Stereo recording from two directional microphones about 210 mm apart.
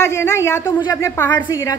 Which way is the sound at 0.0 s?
10° left (ahead or behind).